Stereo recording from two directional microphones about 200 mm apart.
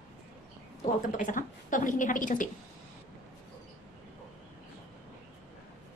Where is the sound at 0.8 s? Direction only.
40° left (ahead or behind).